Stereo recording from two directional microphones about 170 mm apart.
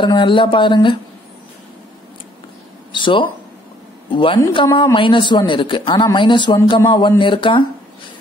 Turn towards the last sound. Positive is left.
turn(degrees=30)  # may be behind; listen again after turning